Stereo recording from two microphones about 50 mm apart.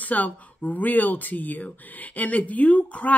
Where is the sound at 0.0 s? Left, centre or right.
Left.